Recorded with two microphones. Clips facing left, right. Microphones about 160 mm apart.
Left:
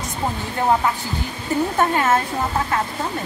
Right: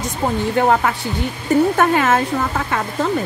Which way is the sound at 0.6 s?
80° right.